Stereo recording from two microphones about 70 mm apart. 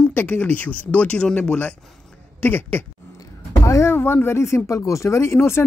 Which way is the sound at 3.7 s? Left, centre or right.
Left.